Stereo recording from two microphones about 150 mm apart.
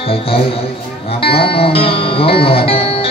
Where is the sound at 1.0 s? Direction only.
40° left (ahead or behind).